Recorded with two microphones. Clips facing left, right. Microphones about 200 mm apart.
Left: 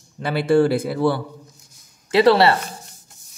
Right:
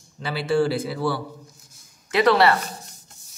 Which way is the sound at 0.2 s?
55° left (ahead or behind).